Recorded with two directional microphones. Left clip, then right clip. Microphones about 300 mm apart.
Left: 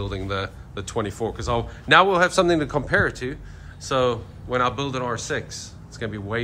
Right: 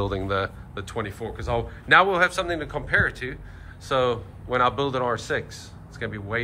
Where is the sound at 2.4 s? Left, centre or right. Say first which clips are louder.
Left 7 dB; centre.